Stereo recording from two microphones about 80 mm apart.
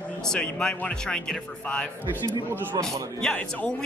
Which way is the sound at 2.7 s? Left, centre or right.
Right.